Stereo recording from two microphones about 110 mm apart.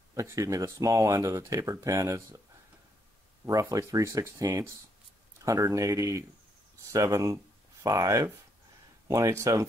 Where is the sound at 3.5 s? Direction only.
30° right (ahead or behind).